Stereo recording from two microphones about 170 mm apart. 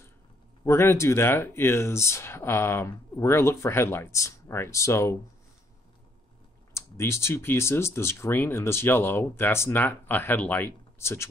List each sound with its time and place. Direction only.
0.7 s speech: 15° left (ahead or behind)
6.7 s speech: 15° left (ahead or behind)